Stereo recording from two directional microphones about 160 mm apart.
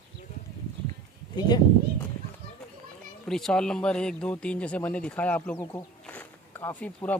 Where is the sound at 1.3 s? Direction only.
25° left (ahead or behind).